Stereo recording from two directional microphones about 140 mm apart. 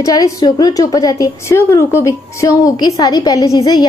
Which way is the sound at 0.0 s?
25° left (ahead or behind).